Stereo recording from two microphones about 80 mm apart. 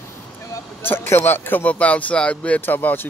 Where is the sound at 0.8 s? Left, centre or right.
Left.